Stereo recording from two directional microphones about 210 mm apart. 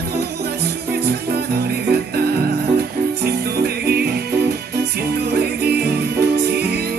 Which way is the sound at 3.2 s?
50° right (ahead or behind).